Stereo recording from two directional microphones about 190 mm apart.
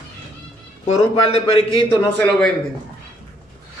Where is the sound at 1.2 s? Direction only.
30° left (ahead or behind).